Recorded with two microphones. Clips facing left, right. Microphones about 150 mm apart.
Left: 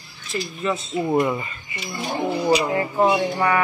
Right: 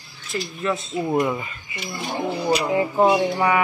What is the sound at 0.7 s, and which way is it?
Speech, 5° left (ahead or behind).